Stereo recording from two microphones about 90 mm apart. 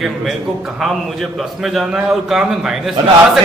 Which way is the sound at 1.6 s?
5° right (ahead or behind).